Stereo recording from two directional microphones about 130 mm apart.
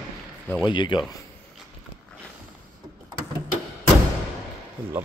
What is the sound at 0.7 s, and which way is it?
Speech, 35° left (ahead or behind).